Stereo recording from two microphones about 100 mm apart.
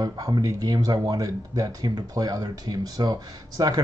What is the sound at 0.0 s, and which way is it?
Speech, 40° right (ahead or behind).